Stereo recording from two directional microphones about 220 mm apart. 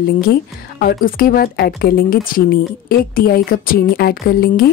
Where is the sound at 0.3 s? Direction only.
45° left (ahead or behind).